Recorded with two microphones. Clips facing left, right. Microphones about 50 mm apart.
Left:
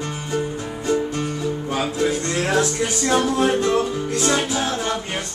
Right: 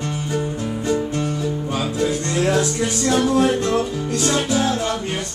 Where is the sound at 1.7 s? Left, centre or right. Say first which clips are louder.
Left 1 dB; left.